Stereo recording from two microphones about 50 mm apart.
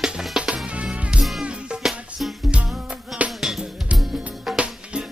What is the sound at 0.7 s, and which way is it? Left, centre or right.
Music, right.